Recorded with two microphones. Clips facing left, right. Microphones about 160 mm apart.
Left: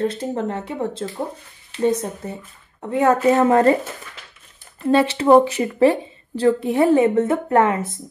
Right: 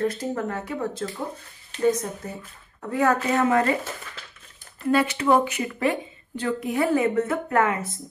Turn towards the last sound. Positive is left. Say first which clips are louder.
# left 5 dB
turn(degrees=30)  # may be behind; listen again after turning